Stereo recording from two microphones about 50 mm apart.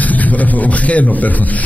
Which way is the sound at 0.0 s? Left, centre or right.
Left.